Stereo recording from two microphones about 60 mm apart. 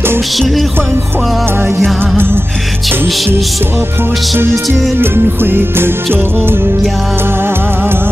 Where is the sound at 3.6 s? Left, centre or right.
Right.